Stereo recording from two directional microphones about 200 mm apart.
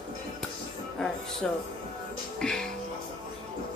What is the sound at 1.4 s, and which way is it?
A woman's voice, 5° left (ahead or behind).